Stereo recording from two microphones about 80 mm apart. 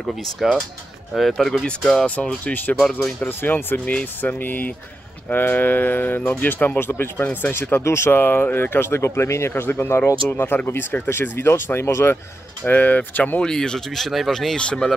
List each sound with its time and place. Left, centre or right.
0.0 s speech: centre; by 2.7 s left
2.8 s speech: centre
3.2 s speech: left
12.6 s speech: left
13.4 s speech: centre